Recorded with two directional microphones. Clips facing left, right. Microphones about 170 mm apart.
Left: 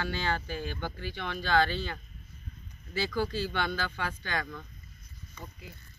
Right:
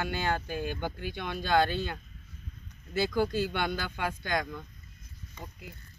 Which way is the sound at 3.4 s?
15° right (ahead or behind).